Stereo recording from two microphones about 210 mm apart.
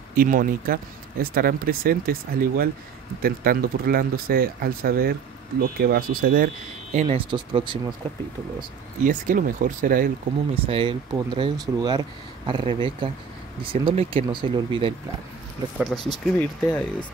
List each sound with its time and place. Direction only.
0.1 s speech: 40° right (ahead or behind); by 7.9 s 25° right (ahead or behind)
9.0 s speech: 40° right (ahead or behind)
10.5 s speech: 25° right (ahead or behind)
15.8 s speech: centre (ahead or behind)